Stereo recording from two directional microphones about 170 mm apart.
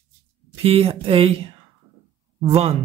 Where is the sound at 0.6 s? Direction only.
35° right (ahead or behind).